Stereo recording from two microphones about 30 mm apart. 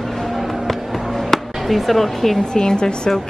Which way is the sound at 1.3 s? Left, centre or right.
Centre.